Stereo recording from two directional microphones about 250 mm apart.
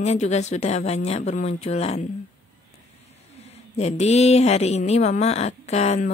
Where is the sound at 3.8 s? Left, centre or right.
Left.